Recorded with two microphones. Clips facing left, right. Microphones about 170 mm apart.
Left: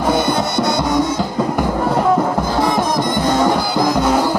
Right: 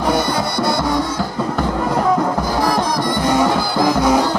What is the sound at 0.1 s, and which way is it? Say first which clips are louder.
Music: left 3 dB; 20° left (ahead or behind).